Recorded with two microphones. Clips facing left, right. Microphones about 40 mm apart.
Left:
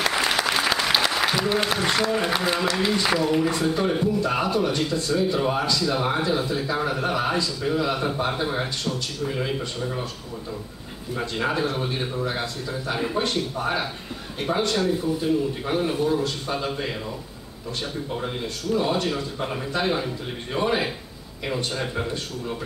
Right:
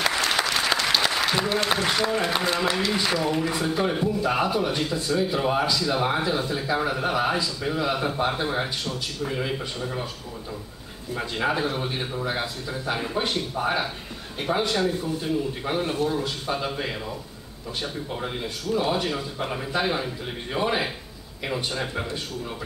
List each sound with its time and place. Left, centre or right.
0.0 s applause: centre
1.7 s a man's voice: centre
11.1 s a man's voice: centre
18.1 s a man's voice: centre